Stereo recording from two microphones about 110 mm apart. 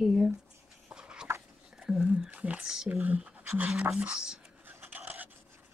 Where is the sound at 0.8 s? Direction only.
10° right (ahead or behind).